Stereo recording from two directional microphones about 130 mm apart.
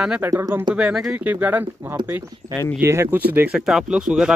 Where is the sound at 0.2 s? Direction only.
20° right (ahead or behind).